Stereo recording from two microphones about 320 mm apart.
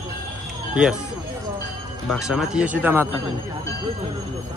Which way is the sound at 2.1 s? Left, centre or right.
Centre.